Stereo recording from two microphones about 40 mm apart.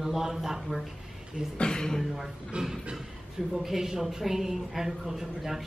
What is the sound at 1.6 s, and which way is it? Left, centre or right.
Speech, centre.